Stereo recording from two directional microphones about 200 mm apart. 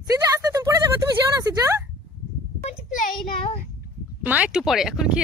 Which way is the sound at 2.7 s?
40° left (ahead or behind).